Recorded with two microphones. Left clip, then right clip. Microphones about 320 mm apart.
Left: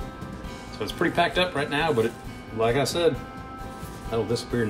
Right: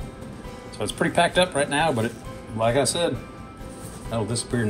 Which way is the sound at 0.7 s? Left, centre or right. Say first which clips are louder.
Right 2 dB; right.